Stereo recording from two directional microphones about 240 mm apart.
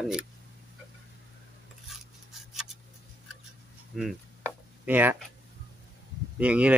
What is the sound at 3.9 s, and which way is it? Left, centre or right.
Speech, centre.